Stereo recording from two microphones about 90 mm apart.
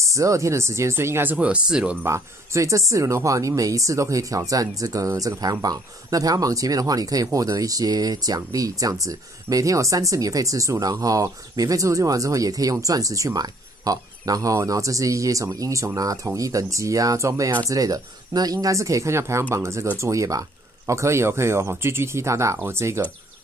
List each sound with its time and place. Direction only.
0.1 s speech: 35° right (ahead or behind); by 2.0 s 10° right (ahead or behind)
2.0 s speech: 30° right (ahead or behind)